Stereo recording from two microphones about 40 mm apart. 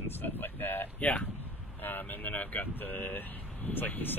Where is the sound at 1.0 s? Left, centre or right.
Left.